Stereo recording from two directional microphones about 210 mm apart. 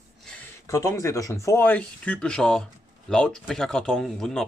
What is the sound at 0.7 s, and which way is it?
Speech, 15° left (ahead or behind).